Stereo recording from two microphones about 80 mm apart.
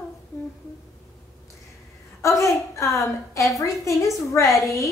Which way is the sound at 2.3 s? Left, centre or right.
Left.